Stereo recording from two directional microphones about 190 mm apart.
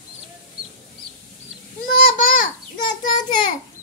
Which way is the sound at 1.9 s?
45° left (ahead or behind).